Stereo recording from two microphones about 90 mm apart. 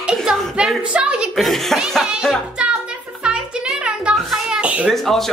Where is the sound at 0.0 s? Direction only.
5° right (ahead or behind).